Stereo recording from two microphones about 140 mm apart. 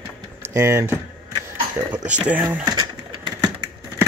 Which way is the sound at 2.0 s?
10° right (ahead or behind).